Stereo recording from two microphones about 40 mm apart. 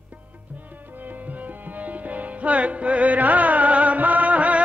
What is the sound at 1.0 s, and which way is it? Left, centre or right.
Music, right.